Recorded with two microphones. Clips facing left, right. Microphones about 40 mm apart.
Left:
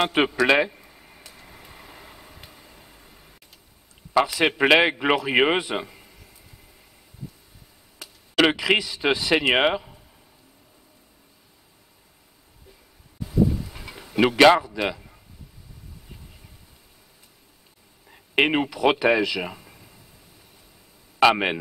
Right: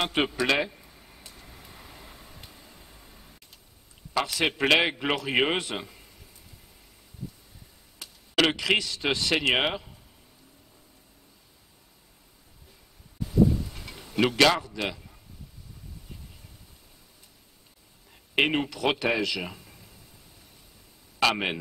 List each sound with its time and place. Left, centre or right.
0.0 s a man's voice: centre
0.5 s a sound: centre
1.2 s vehicle: centre
4.1 s a man's voice: centre
8.0 s speech: centre
13.2 s a sound: centre
14.6 s a man's voice: centre
18.1 s speech: centre
21.2 s a man's voice: centre